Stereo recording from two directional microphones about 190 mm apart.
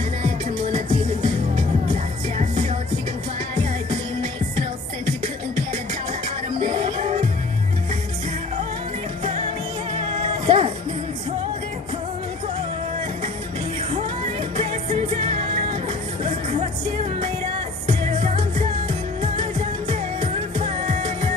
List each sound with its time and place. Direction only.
0.2 s music: 30° right (ahead or behind)
2.3 s music: 35° right (ahead or behind)
6.7 s music: 30° right (ahead or behind)
10.4 s music: 25° right (ahead or behind)
14.6 s music: 30° right (ahead or behind)
16.5 s music: 30° right (ahead or behind)